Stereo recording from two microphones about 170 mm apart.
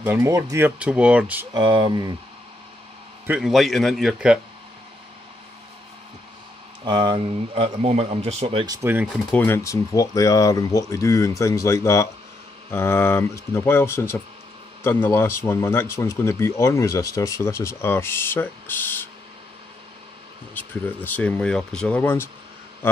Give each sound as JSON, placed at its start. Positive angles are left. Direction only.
{"t": 0.0, "sound": "speech", "side_deg": -15}
{"t": 1.5, "sound": "speech", "side_deg": -30}
{"t": 3.3, "sound": "a man's voice", "side_deg": -5}
{"t": 6.8, "sound": "speech", "side_deg": -25}
{"t": 8.6, "sound": "speech", "side_deg": -15}
{"t": 9.3, "sound": "speech", "side_deg": 10}
{"t": 20.5, "sound": "speech", "side_deg": 10}